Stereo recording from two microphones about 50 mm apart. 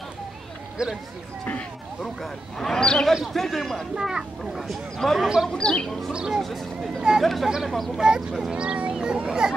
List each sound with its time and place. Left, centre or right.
0.8 s speech: centre
2.6 s speech: centre
4.0 s speech: centre
4.9 s speech: centre
6.1 s speech: centre
6.4 s speech: centre
7.4 s speech: centre
7.7 s speech: centre
8.0 s speech: centre